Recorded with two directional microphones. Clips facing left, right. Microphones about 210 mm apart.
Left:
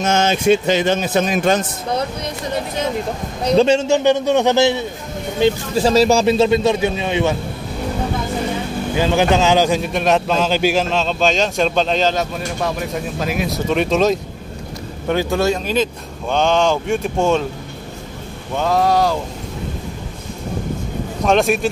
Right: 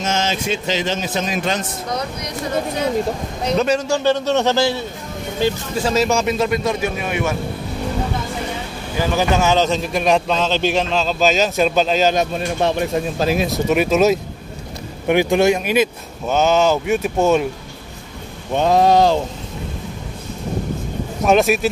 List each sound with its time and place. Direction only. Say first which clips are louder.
0.0 s speech: left 5 dB; 55° left (ahead or behind)
3.5 s speech: left 5 dB; 25° left (ahead or behind)
5.8 s speech: left 4 dB; 35° left (ahead or behind)
8.9 s a man's voice: left 2 dB; 20° left (ahead or behind); by 13.5 s 30° right (ahead or behind)
13.7 s a man's voice: right 1 dB; 5° right (ahead or behind)
15.0 s speech: right 3 dB; 15° right (ahead or behind)
18.5 s speech: right 3 dB; 20° right (ahead or behind)
21.2 s a man's voice: right 1 dB; 5° right (ahead or behind)